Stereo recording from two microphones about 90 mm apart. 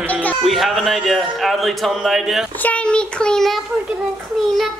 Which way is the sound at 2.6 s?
15° left (ahead or behind).